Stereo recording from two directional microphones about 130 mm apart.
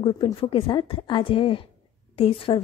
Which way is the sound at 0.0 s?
45° left (ahead or behind).